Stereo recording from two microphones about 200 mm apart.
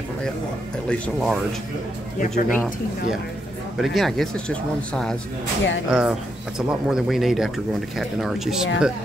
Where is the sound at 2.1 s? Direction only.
40° left (ahead or behind).